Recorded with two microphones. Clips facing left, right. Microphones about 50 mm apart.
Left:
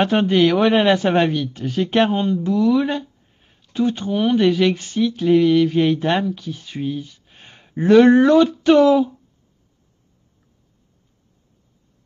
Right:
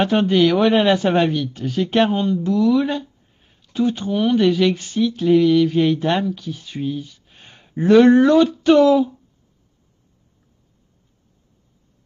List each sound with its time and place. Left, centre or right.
0.0 s speech: centre
4.2 s speech: centre
4.9 s speech: centre
6.8 s speech: centre
7.4 s a sound: centre
8.0 s speech: centre